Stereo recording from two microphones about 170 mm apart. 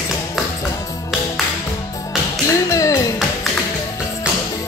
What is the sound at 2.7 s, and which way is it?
Music, 20° left (ahead or behind).